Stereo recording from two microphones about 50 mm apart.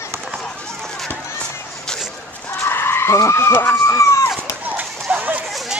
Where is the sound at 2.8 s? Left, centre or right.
Left.